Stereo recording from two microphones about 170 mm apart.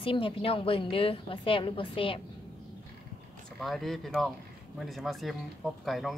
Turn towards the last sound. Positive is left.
turn(degrees=0)  # may be behind; listen again after turning